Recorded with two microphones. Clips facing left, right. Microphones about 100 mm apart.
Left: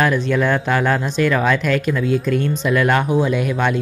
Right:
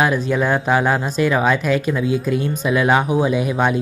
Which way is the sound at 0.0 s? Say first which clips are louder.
Left 1 dB; 10° right (ahead or behind).